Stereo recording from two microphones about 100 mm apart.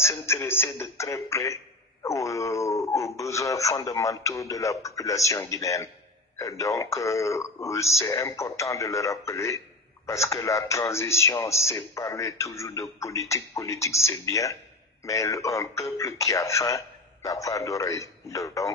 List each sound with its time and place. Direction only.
0.0 s speech: 25° left (ahead or behind)